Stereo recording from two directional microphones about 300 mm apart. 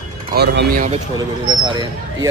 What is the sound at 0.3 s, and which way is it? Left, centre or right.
Speech, right.